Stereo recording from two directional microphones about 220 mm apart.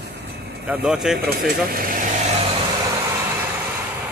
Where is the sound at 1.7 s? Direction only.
40° right (ahead or behind).